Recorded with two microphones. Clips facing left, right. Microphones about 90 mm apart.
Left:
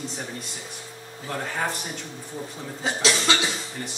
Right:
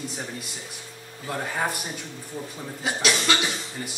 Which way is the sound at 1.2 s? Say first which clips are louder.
Right 1 dB; 5° right (ahead or behind).